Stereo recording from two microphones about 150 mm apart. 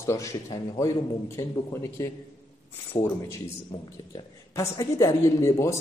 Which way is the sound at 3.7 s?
30° left (ahead or behind).